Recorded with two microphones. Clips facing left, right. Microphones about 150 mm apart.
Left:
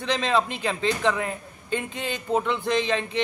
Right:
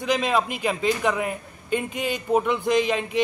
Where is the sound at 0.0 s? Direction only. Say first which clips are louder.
Right 1 dB; 10° right (ahead or behind).